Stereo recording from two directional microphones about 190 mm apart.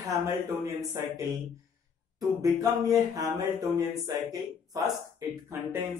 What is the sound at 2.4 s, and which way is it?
Speech, 20° right (ahead or behind).